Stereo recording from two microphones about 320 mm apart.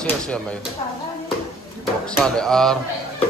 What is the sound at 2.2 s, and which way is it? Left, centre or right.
Speech, centre.